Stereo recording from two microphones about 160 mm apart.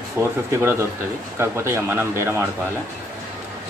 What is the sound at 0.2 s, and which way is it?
Speech, 15° right (ahead or behind).